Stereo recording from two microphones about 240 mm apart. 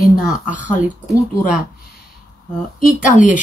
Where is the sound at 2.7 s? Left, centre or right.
Left.